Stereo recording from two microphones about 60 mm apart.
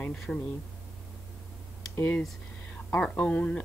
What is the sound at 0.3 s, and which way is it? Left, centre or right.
Speech, centre.